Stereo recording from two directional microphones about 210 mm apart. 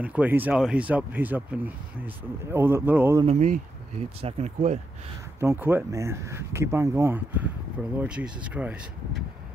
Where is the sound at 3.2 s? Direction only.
35° right (ahead or behind).